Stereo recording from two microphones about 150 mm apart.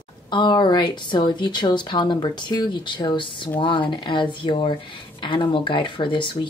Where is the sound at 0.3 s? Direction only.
30° left (ahead or behind).